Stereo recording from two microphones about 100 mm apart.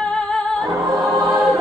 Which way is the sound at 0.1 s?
10° left (ahead or behind).